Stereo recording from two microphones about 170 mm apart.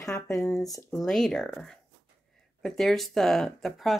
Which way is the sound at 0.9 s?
Centre (ahead or behind).